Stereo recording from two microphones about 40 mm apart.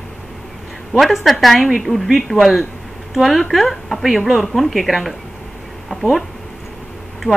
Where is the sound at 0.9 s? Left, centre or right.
Centre.